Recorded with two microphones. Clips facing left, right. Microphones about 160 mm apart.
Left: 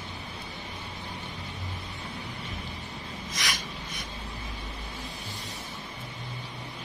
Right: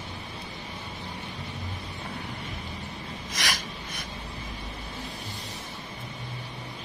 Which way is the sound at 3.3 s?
65° right (ahead or behind).